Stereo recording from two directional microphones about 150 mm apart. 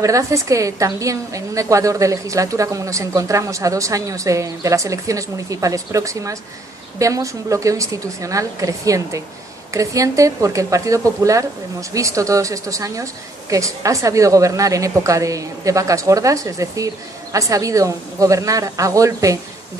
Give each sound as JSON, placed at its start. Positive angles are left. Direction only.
{"t": 0.0, "sound": "a woman's voice", "side_deg": -20}